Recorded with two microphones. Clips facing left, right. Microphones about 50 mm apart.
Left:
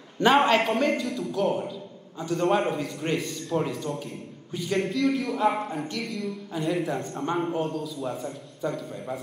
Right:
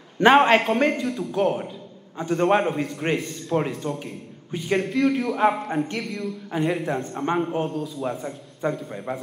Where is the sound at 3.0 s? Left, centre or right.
Right.